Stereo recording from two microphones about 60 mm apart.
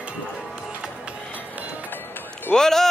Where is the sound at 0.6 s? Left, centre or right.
Centre.